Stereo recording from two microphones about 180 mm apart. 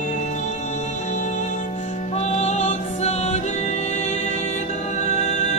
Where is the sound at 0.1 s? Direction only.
40° left (ahead or behind).